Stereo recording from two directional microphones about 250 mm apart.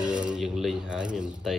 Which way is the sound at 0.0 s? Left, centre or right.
Centre.